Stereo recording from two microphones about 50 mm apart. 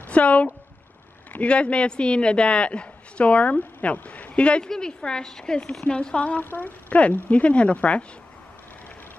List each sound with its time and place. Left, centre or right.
0.0 s a sound: left
1.3 s a woman's voice: left
6.4 s a woman's voice: left